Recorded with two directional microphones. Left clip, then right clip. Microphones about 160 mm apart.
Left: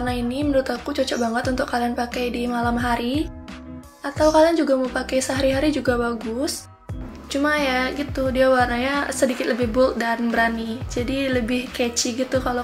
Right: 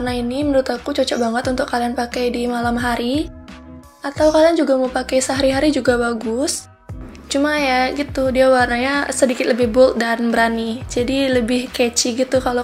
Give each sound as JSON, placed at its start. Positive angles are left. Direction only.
{"t": 0.0, "sound": "speech", "side_deg": -30}
{"t": 7.2, "sound": "speech", "side_deg": -30}